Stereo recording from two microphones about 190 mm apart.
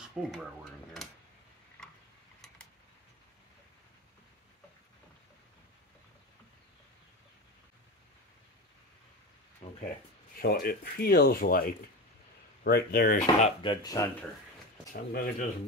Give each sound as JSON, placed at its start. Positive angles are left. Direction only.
{"t": 0.0, "sound": "speech", "side_deg": 0}
{"t": 1.8, "sound": "tick-tock", "side_deg": 5}
{"t": 9.6, "sound": "a sound", "side_deg": 35}
{"t": 10.3, "sound": "speech", "side_deg": 55}
{"t": 13.4, "sound": "speech", "side_deg": 30}
{"t": 14.9, "sound": "speech", "side_deg": 45}